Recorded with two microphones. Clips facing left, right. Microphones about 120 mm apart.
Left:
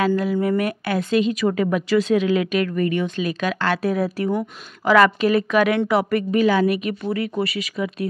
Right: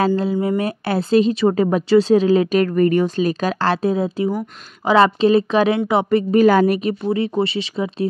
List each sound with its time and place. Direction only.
0.0 s a woman's voice: 30° right (ahead or behind)
6.3 s a woman's voice: 45° right (ahead or behind)
6.8 s speech: 30° right (ahead or behind)